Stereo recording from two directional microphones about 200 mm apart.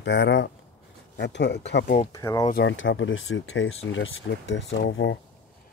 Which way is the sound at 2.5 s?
70° left (ahead or behind).